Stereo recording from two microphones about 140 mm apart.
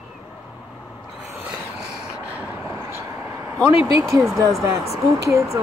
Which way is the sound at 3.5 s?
5° left (ahead or behind).